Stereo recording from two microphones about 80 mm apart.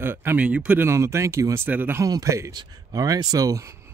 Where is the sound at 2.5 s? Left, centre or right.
Right.